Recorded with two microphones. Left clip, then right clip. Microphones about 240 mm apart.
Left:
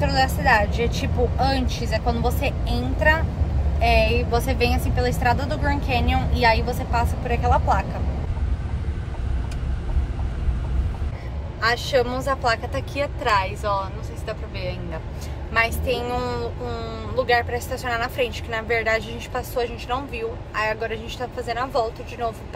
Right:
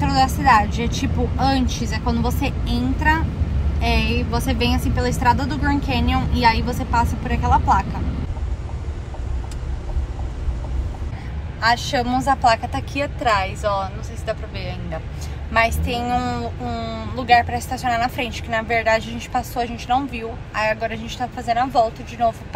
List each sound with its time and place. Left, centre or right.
0.0 s a woman's voice: centre
11.6 s speech: centre